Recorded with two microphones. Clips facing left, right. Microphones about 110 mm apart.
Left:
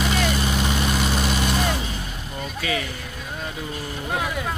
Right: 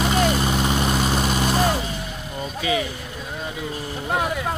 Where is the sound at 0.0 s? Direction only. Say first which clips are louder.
Right 3 dB; 40° right (ahead or behind).